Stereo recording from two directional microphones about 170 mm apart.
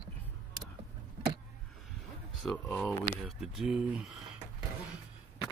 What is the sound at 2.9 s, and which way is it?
Speech, 5° right (ahead or behind).